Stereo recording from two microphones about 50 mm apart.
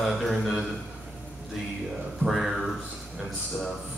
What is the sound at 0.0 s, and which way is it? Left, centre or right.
Speech, centre.